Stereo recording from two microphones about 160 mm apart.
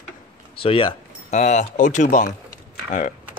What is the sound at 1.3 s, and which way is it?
Speech, 45° left (ahead or behind).